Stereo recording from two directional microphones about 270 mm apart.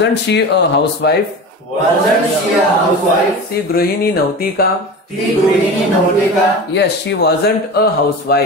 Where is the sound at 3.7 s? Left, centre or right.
Left.